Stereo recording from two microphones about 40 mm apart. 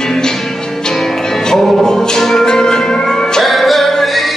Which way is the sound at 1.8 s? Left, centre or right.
Centre.